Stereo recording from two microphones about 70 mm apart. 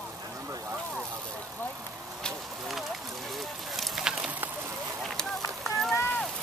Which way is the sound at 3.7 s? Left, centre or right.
Centre.